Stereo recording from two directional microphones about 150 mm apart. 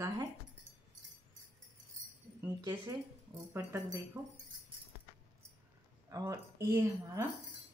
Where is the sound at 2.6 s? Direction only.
25° right (ahead or behind).